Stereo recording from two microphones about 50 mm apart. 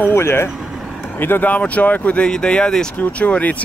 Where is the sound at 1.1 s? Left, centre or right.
Left.